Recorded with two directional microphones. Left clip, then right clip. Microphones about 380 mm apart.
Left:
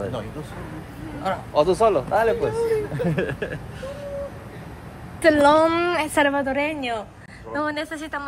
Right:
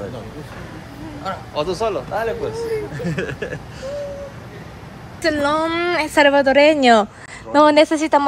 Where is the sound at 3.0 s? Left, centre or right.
Centre.